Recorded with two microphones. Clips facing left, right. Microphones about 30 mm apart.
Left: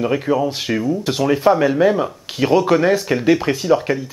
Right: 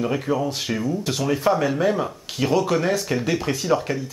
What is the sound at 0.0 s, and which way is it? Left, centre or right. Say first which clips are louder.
Speech: left 5 dB; centre.